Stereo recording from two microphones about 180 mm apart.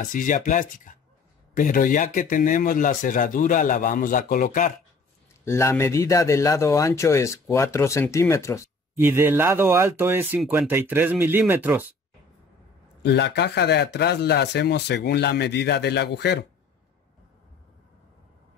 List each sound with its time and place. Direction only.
0.0 s speech: 45° left (ahead or behind)
5.4 s speech: 15° left (ahead or behind)
8.9 s speech: 15° right (ahead or behind)
10.4 s speech: centre (ahead or behind)
10.7 s speech: 10° right (ahead or behind)
13.0 s speech: 70° left (ahead or behind)